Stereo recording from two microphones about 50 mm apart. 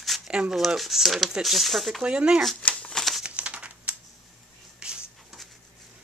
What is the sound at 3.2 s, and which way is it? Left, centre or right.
Crumpling, right.